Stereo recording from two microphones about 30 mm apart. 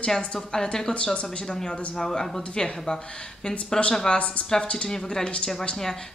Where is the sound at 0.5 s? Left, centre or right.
Left.